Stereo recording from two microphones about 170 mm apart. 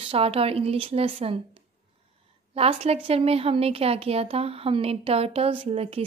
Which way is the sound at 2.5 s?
35° right (ahead or behind).